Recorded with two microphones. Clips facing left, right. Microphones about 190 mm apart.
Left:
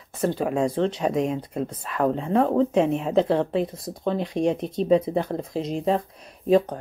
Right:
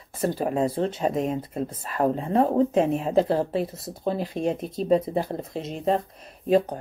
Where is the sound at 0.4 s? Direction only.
35° right (ahead or behind).